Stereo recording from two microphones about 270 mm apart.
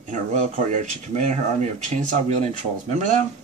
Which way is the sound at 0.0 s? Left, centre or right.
Right.